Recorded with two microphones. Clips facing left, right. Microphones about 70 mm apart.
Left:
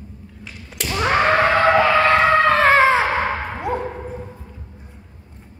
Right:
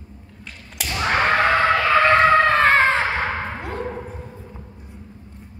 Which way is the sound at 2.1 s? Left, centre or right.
Centre.